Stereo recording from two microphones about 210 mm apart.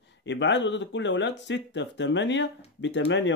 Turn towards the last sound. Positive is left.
turn(degrees=60)  # may be behind; listen again after turning